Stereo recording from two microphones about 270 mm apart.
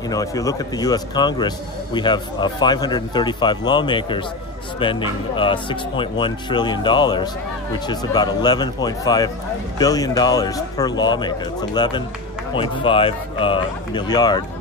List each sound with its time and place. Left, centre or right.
0.1 s speech: centre